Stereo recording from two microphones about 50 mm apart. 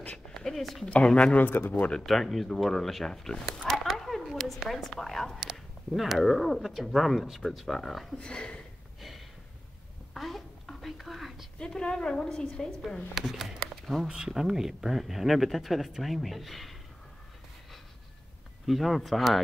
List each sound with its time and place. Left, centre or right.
0.6 s speech: centre
0.8 s speech: left
1.4 s speech: left
1.9 s speech: centre
3.7 s a sound: centre
4.6 s a woman's voice: centre
5.4 s speech: centre
8.2 s speech: centre
10.1 s whispering: centre
11.6 s a woman's voice: centre
13.1 s speech: centre
18.7 s speech: centre